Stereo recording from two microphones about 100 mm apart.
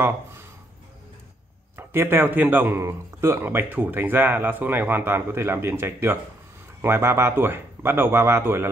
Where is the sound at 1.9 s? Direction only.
25° right (ahead or behind).